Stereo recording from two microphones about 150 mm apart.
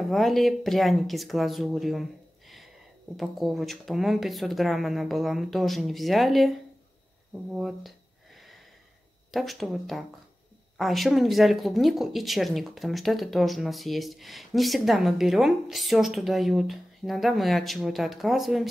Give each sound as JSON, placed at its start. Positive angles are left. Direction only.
{"t": 0.0, "sound": "speech", "side_deg": 0}
{"t": 3.2, "sound": "speech", "side_deg": 0}
{"t": 7.5, "sound": "speech", "side_deg": 0}
{"t": 9.3, "sound": "speech", "side_deg": 0}